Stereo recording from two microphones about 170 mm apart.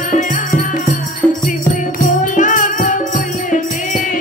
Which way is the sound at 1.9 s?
50° left (ahead or behind).